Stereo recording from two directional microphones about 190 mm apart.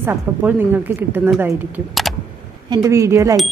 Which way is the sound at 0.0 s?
10° right (ahead or behind).